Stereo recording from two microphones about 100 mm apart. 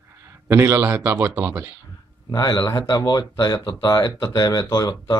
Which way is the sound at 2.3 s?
40° left (ahead or behind).